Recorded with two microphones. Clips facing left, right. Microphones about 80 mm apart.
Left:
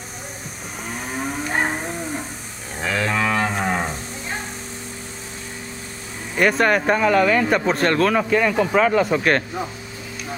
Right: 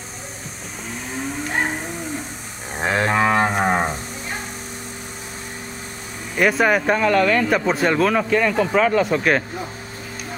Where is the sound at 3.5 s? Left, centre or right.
Right.